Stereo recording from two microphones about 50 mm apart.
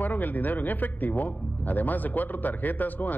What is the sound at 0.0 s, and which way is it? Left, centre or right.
Speech, left.